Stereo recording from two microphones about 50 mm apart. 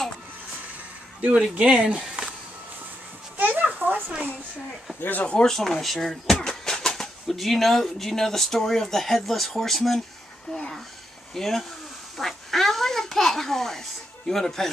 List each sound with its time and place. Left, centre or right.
1.3 s speech: right
3.3 s a sound: right
5.0 s speech: left
5.4 s a child's voice: centre